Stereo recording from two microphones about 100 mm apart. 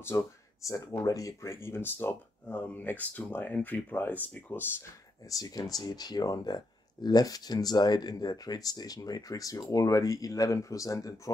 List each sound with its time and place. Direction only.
0.0 s speech: 30° left (ahead or behind)
5.3 s speech: 40° left (ahead or behind)